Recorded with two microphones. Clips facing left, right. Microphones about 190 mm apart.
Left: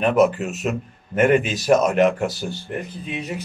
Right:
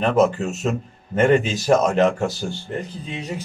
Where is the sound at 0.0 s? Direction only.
15° left (ahead or behind).